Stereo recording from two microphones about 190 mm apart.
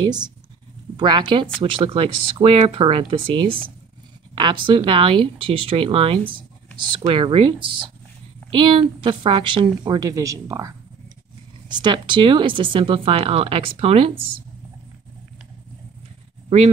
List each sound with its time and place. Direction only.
0.0 s speech: 20° right (ahead or behind)
11.7 s speech: 25° right (ahead or behind)
16.4 s speech: 30° right (ahead or behind)